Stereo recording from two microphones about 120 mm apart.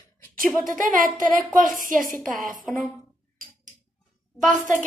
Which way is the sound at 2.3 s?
90° right.